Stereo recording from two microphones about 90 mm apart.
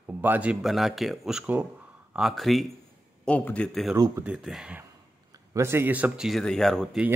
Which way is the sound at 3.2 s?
15° left (ahead or behind).